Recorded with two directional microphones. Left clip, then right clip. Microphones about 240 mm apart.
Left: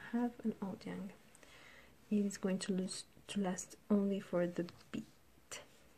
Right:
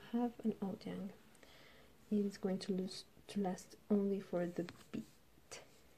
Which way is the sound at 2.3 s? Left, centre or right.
Centre.